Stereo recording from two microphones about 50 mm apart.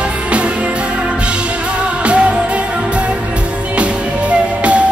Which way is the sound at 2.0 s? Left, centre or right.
Right.